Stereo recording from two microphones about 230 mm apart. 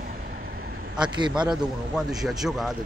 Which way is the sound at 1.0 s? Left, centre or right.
Centre.